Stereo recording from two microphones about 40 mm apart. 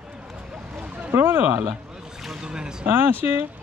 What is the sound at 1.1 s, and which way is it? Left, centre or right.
Speech, right.